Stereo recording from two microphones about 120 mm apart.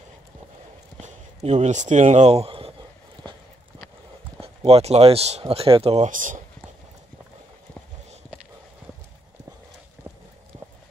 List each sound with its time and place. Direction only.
1.0 s speech: 70° right (ahead or behind); by 2.7 s 55° right (ahead or behind)
4.4 s speech: 55° right (ahead or behind)
6.0 s speech: 90° right